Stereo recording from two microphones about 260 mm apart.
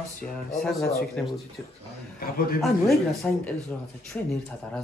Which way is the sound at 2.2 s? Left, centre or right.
Left.